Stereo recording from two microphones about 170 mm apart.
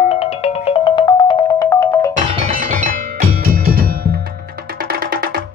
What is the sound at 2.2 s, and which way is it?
Music, 50° right (ahead or behind).